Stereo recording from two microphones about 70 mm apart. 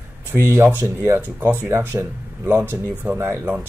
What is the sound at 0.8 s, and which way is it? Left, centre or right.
Speech, right.